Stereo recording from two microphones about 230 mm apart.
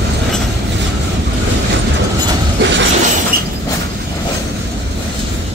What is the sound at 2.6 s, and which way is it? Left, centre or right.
Shatter, right.